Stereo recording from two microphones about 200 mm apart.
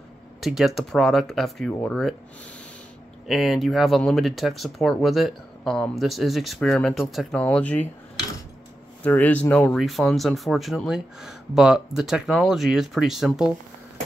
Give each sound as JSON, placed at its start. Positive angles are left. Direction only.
{"t": 0.4, "sound": "speech", "side_deg": 0}
{"t": 3.3, "sound": "speech", "side_deg": 0}
{"t": 9.0, "sound": "speech", "side_deg": 10}